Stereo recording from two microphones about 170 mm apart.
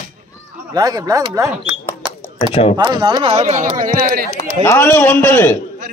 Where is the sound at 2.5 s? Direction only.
35° left (ahead or behind).